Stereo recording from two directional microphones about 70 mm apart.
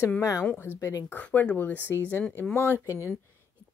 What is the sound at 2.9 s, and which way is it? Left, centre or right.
Speech, right.